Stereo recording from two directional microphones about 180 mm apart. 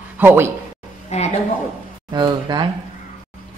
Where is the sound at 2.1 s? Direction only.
25° right (ahead or behind).